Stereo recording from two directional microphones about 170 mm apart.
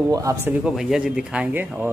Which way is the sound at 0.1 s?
20° right (ahead or behind).